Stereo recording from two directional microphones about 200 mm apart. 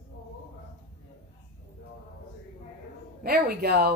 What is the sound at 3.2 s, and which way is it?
Speech, 50° right (ahead or behind).